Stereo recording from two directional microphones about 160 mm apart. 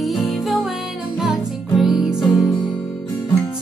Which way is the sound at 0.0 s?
Centre (ahead or behind).